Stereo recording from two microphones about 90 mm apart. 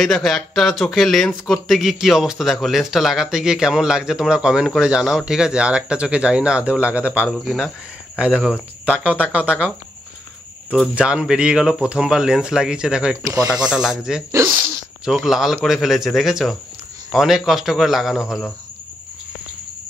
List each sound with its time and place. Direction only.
0.0 s speech: 5° left (ahead or behind); by 7.2 s 15° right (ahead or behind)
7.2 s speech: 5° right (ahead or behind)
11.0 s speech: 10° right (ahead or behind)
14.3 s speech: 25° right (ahead or behind)
15.0 s speech: 5° right (ahead or behind)